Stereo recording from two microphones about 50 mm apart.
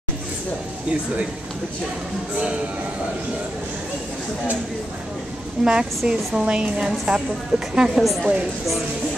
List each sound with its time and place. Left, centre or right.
5.6 s a woman's voice: centre